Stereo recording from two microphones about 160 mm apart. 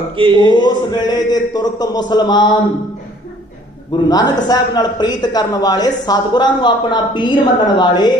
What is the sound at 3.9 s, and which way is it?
A man's voice, 25° left (ahead or behind).